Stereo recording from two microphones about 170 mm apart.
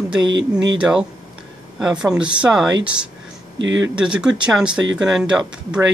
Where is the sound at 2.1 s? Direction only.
5° right (ahead or behind).